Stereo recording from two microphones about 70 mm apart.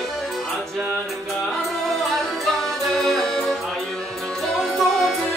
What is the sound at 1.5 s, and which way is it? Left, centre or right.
Music, centre.